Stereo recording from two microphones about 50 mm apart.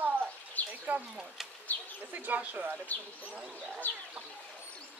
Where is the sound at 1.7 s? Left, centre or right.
Left.